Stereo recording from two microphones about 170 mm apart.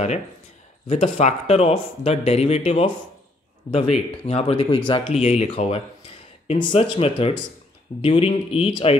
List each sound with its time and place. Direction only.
0.8 s speech: 45° left (ahead or behind)